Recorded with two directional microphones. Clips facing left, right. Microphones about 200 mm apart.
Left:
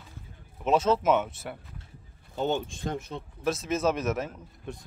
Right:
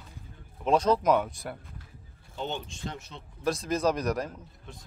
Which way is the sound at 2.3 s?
45° left (ahead or behind).